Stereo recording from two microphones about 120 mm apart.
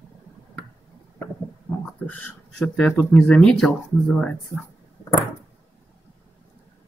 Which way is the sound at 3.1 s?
5° left (ahead or behind).